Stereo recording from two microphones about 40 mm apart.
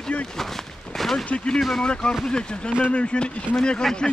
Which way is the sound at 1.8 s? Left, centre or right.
Left.